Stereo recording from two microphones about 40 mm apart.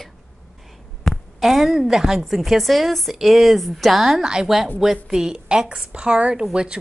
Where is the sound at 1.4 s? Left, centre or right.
Centre.